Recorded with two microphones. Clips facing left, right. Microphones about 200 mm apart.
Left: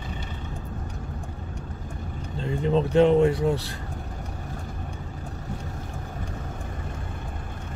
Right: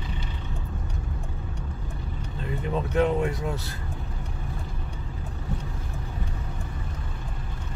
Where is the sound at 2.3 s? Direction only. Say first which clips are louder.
Left 6 dB; 25° left (ahead or behind).